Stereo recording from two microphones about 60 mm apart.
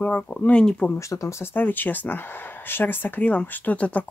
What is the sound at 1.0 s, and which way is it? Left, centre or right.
Speech, left.